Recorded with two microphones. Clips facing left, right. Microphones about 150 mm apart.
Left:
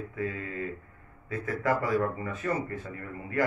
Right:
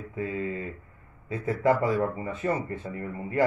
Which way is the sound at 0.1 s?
25° right (ahead or behind).